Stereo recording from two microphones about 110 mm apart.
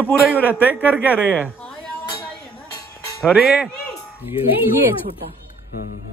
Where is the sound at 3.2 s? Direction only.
5° right (ahead or behind).